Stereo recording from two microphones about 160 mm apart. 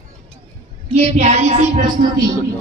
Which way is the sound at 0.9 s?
45° right (ahead or behind).